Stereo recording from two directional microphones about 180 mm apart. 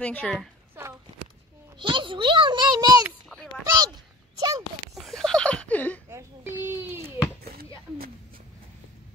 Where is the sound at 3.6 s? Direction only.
20° right (ahead or behind).